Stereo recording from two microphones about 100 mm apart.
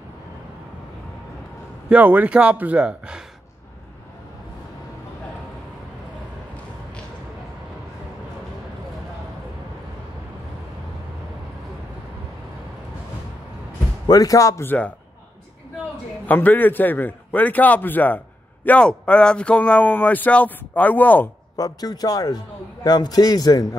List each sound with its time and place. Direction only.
1.9 s a man's voice: 15° right (ahead or behind)
14.0 s a man's voice: 40° left (ahead or behind)
16.3 s a man's voice: 20° left (ahead or behind)
21.5 s a man's voice: 40° left (ahead or behind)